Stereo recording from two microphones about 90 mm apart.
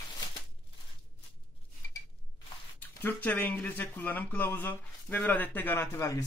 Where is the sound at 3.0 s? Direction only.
20° left (ahead or behind).